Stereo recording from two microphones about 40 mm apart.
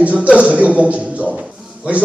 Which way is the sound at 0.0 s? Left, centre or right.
Right.